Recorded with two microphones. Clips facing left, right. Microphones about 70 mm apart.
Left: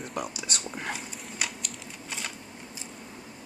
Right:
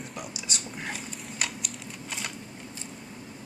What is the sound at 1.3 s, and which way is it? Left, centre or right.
Typing, centre.